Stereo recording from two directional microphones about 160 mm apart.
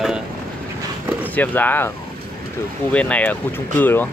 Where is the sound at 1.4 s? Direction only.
10° left (ahead or behind).